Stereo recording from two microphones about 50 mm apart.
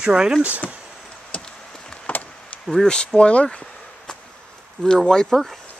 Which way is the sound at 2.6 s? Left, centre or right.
Centre.